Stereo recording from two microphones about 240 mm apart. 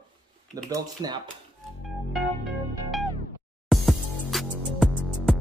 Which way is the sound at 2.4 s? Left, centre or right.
Centre.